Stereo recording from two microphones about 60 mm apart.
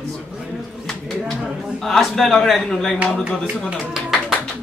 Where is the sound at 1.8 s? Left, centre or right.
Centre.